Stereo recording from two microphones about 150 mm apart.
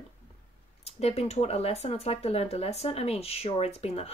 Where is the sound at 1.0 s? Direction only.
45° left (ahead or behind).